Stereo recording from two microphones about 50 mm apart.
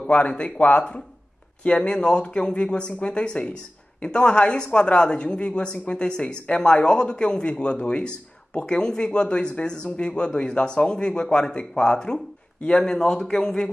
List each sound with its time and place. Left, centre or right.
0.0 s speech: left